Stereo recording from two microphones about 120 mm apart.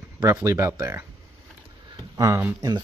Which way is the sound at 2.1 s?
30° right (ahead or behind).